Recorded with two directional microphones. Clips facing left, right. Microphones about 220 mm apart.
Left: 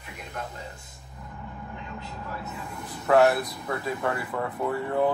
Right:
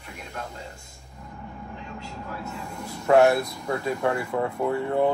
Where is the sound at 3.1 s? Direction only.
20° right (ahead or behind).